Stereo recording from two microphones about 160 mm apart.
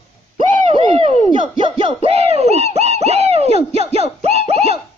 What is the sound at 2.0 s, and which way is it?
Speech, 40° right (ahead or behind).